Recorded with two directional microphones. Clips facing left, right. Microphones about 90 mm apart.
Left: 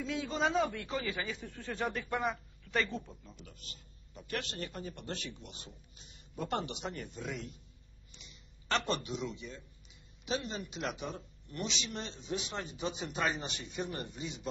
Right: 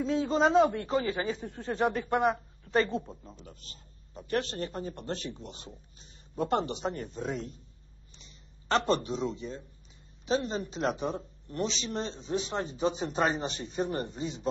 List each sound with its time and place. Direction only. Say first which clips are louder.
0.0 s a man's voice: right 8 dB; 35° right (ahead or behind)